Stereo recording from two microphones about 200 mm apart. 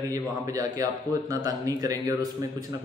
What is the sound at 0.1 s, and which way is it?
Speech, 15° right (ahead or behind).